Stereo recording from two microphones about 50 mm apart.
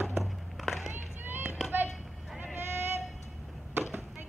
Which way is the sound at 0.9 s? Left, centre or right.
Right.